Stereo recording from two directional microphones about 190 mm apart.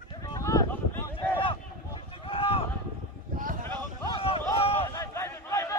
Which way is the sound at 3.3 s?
45° right (ahead or behind).